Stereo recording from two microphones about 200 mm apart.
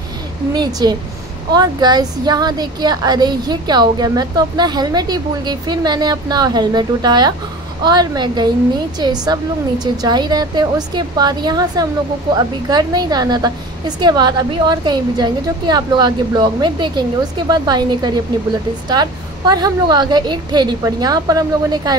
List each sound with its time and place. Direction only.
0.5 s a woman's voice: 20° right (ahead or behind)